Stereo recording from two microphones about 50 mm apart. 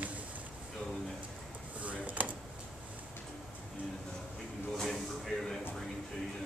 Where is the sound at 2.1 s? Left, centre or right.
Right.